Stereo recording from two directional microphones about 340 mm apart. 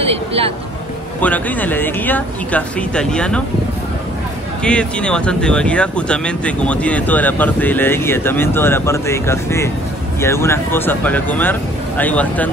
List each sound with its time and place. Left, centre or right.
0.0 s speech: centre
1.2 s speech: centre
4.6 s speech: centre